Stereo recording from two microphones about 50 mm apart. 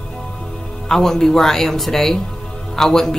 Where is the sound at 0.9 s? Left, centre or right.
Centre.